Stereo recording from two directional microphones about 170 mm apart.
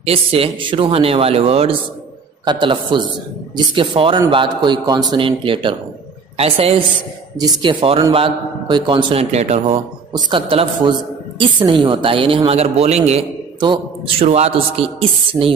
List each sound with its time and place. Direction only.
0.0 s a man's voice: 35° right (ahead or behind)
7.3 s a man's voice: 25° right (ahead or behind)